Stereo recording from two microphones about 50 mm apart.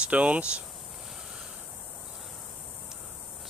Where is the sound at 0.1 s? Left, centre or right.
Right.